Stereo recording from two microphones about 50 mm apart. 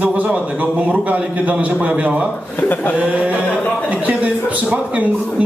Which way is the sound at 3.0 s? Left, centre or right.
Right.